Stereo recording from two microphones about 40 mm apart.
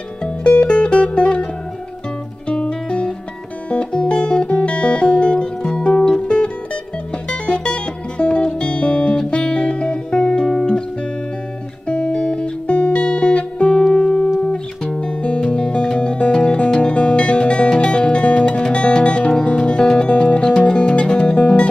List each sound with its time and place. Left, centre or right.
0.6 s music: left
11.9 s music: left
13.9 s music: centre
19.8 s music: centre
20.1 s music: left